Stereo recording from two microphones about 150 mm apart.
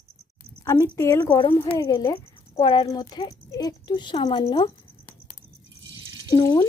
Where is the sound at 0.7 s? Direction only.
20° left (ahead or behind).